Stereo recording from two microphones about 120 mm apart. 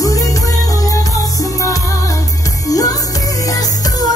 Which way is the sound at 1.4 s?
30° left (ahead or behind).